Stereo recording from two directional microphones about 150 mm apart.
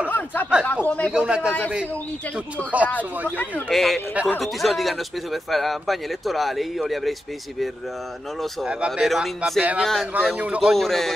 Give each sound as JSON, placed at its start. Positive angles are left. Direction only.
{"t": 0.1, "sound": "a sound", "side_deg": 10}
{"t": 0.8, "sound": "speech", "side_deg": 10}
{"t": 1.1, "sound": "speech", "side_deg": -5}
{"t": 3.3, "sound": "speech", "side_deg": 10}
{"t": 8.4, "sound": "speech", "side_deg": -5}